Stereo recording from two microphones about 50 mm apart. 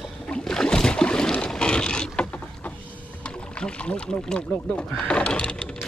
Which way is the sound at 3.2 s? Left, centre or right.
Left.